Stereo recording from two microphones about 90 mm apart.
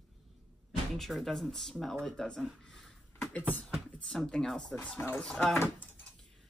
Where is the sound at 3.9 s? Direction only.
5° left (ahead or behind).